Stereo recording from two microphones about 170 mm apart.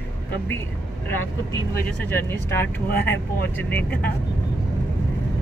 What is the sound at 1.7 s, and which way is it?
Speech, 15° left (ahead or behind).